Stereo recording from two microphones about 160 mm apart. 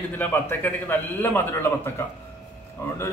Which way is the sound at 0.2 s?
15° left (ahead or behind).